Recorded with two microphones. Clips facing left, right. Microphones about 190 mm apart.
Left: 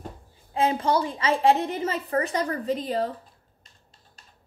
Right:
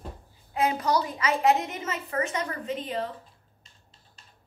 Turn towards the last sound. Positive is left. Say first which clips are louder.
# left 5 dB
turn(degrees=35)  # may be behind; listen again after turning